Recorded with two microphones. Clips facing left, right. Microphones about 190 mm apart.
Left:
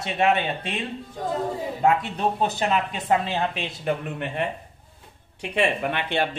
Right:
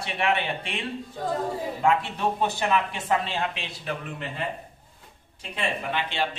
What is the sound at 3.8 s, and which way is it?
A man's voice, 60° left (ahead or behind).